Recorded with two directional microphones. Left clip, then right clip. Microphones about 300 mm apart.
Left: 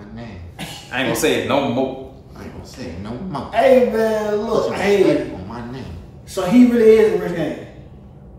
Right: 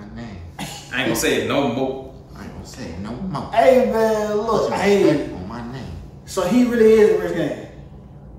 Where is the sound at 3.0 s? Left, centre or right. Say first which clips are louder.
Left 1 dB; centre.